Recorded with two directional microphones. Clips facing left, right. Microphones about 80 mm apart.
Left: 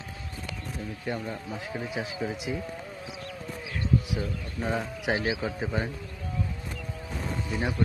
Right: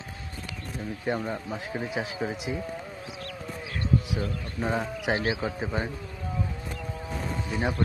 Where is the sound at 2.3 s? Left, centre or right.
Centre.